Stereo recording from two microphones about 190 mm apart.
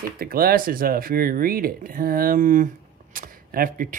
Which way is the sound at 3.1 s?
45° right (ahead or behind).